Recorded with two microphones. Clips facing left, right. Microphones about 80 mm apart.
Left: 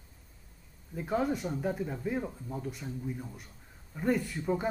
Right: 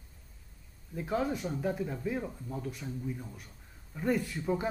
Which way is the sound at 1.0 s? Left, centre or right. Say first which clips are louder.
Left 1 dB; centre.